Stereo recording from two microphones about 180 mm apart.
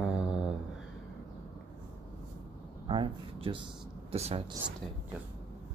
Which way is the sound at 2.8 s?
30° right (ahead or behind).